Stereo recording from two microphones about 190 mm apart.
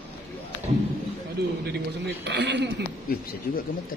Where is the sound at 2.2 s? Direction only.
65° right (ahead or behind).